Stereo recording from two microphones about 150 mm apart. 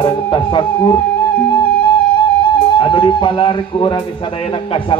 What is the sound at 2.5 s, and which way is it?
Speech, 35° left (ahead or behind).